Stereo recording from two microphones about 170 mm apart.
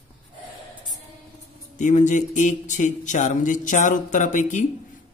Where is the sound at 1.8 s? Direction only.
45° left (ahead or behind).